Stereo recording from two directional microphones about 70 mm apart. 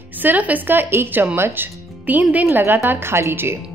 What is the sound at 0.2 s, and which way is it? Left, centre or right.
Speech, right.